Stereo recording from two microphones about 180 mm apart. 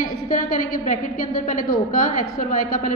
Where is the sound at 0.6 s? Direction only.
45° left (ahead or behind).